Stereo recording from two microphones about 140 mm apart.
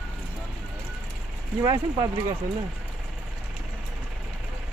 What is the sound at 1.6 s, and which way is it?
Speech, 25° right (ahead or behind).